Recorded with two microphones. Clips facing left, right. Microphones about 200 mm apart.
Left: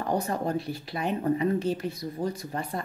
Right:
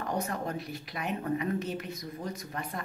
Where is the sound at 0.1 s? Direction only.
30° left (ahead or behind).